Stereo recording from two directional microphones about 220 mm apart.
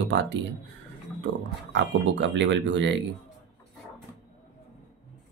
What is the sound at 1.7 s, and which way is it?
Speech, 55° right (ahead or behind).